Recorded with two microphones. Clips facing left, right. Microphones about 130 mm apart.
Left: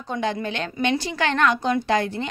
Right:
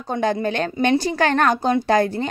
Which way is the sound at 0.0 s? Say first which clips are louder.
Right 5 dB; 45° right (ahead or behind).